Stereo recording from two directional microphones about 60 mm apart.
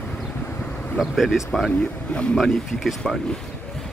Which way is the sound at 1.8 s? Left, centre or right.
Centre.